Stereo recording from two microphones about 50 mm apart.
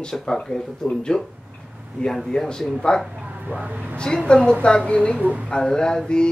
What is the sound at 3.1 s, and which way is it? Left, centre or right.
Speech, right.